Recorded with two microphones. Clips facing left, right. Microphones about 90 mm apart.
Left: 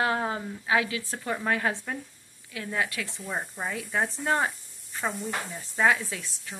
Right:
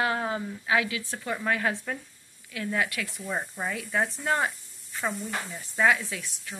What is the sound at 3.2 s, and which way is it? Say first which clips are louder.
Speech: right 1 dB; 5° left (ahead or behind).